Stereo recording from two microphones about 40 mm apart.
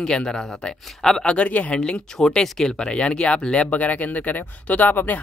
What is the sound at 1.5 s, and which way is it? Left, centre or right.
Speech, left.